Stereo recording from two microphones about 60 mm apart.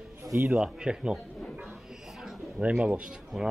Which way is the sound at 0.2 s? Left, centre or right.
Right.